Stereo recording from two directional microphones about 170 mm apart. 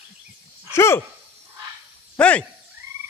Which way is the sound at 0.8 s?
15° left (ahead or behind).